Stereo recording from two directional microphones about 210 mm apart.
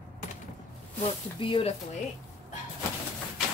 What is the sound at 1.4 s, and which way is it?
Speech, 25° left (ahead or behind).